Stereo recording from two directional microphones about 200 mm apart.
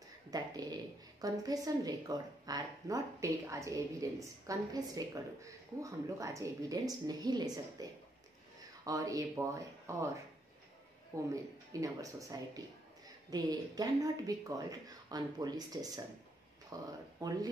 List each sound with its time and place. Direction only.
0.3 s a woman's voice: 20° right (ahead or behind)